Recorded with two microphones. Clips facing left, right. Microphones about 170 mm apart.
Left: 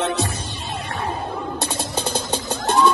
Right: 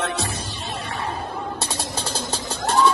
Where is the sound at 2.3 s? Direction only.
35° right (ahead or behind).